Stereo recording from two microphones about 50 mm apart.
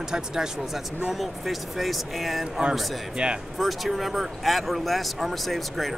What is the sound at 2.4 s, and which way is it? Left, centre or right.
Speech, centre.